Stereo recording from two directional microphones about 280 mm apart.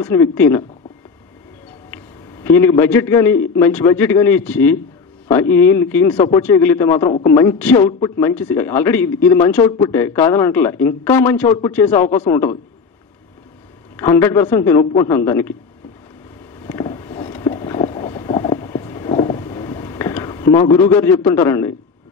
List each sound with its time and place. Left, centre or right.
0.3 s a man's voice: centre
2.5 s a man's voice: centre
6.1 s a man's voice: left
6.6 s a man's voice: centre
7.1 s a man's voice: left
7.5 s a man's voice: centre
11.9 s a man's voice: left
14.2 s a man's voice: centre
16.5 s boat: centre
20.5 s a man's voice: left
20.8 s a man's voice: centre